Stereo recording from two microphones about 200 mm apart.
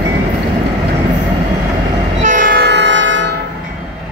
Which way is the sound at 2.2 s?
40° right (ahead or behind).